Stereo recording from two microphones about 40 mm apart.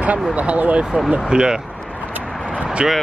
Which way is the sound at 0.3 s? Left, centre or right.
Right.